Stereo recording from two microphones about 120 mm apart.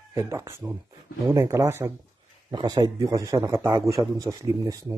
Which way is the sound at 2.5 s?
40° right (ahead or behind).